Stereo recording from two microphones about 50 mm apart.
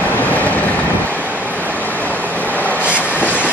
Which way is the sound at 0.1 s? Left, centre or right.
Left.